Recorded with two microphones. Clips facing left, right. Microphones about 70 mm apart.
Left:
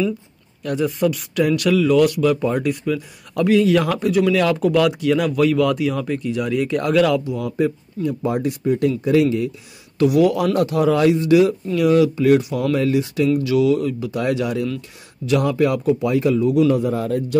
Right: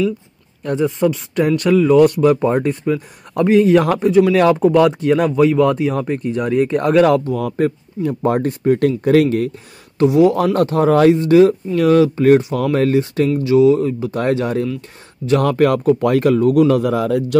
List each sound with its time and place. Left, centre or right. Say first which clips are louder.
0.7 s speech: right 3 dB; right
9.9 s a man's voice: right 3 dB; right
10.3 s speech: right 3 dB; right
12.4 s speech: right 3 dB; right
12.7 s speech: right 4 dB; right
15.4 s speech: right 5 dB; right